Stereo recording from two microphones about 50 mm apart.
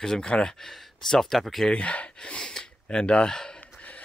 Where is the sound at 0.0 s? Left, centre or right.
Centre.